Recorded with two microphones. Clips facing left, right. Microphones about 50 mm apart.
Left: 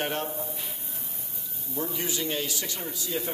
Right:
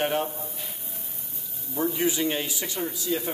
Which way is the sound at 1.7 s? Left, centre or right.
Centre.